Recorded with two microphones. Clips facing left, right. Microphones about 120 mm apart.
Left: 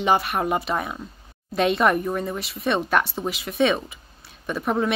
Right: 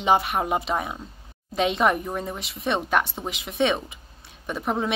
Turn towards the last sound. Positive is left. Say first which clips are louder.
# left 3 dB
turn(degrees=-15)  # may be behind; listen again after turning